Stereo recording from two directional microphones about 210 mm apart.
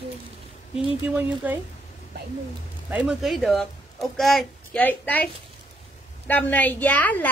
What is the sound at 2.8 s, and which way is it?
Speech, 5° right (ahead or behind).